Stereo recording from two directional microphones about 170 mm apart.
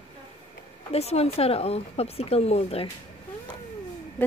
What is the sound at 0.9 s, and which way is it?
Speech, 40° left (ahead or behind).